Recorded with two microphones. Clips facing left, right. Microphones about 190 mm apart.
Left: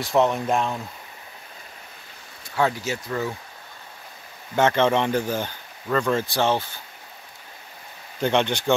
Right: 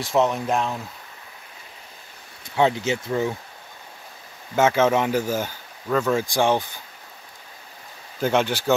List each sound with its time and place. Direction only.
0.0 s speech: centre (ahead or behind)
2.5 s speech: 20° right (ahead or behind)
4.6 s speech: 5° right (ahead or behind)
8.2 s speech: 5° right (ahead or behind)